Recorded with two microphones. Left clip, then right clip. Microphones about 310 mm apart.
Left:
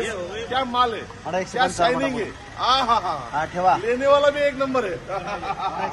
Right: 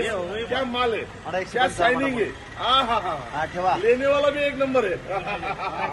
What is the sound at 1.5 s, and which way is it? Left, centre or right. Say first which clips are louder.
A man's voice: even; centre.